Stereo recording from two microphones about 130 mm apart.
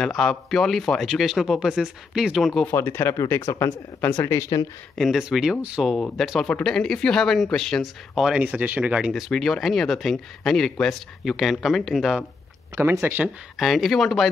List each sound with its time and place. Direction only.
0.0 s speech: 5° left (ahead or behind)
2.6 s speech: 20° left (ahead or behind)
4.9 s speech: centre (ahead or behind)
5.9 s speech: 5° left (ahead or behind)
12.7 s speech: 20° right (ahead or behind)
13.6 s speech: centre (ahead or behind)